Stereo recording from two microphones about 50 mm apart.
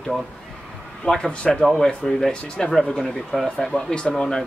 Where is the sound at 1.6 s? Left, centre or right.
Centre.